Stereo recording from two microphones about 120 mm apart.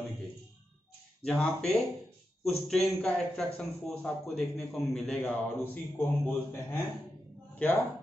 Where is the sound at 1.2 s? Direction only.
5° left (ahead or behind).